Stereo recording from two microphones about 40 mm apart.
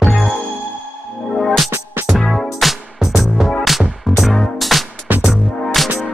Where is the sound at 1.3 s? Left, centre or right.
Centre.